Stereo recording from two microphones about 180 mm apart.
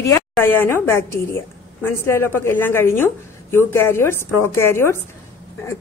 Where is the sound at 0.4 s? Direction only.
10° left (ahead or behind).